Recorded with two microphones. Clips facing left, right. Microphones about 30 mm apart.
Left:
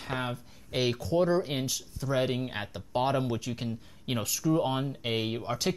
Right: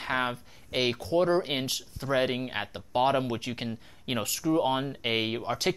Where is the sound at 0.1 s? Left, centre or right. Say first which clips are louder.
Right 4 dB; right.